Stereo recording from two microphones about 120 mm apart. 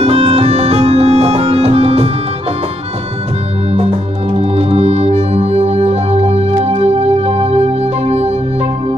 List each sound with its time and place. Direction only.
0.0 s music: 60° right (ahead or behind)
4.4 s music: 60° right (ahead or behind)